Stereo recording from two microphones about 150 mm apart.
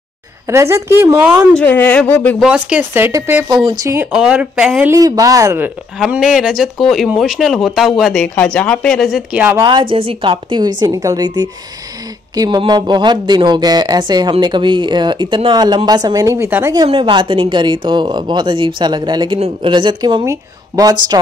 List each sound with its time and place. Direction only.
0.5 s speech: 20° right (ahead or behind)
1.6 s speech: 10° left (ahead or behind)
2.4 s speech: 10° right (ahead or behind)
3.4 s speech: 30° right (ahead or behind)
4.1 s speech: 5° right (ahead or behind)
4.9 s speech: 25° right (ahead or behind)
5.9 s speech: 5° right (ahead or behind)
9.6 s speech: 30° right (ahead or behind)
16.7 s speech: 30° right (ahead or behind)